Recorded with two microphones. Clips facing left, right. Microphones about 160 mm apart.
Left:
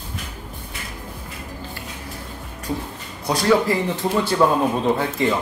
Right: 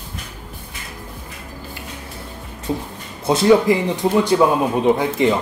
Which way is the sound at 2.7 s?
25° right (ahead or behind).